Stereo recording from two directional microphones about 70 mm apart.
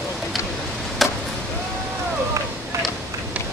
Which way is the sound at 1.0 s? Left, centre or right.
Centre.